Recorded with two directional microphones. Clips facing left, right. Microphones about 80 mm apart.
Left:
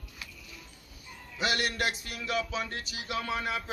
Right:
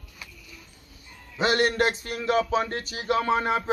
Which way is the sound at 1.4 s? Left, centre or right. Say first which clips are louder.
Right 8 dB; right.